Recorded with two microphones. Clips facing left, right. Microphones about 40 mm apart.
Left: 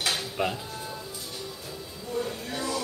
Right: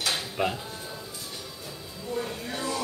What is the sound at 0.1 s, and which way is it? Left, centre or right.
Sheep, centre.